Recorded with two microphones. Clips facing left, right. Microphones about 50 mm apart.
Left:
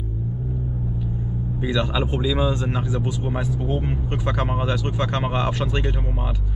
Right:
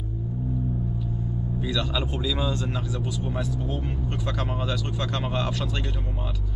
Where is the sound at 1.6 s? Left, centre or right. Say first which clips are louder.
Left 6 dB; left.